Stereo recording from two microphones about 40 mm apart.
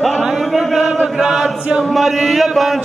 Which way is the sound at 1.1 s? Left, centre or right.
Centre.